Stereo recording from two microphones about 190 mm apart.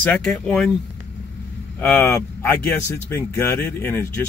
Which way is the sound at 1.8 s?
10° left (ahead or behind).